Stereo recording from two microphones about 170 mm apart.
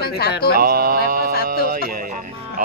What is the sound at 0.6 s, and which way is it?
Mantra, 60° right (ahead or behind).